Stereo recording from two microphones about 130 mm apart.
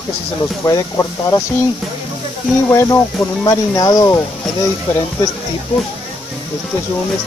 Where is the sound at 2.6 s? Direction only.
25° left (ahead or behind).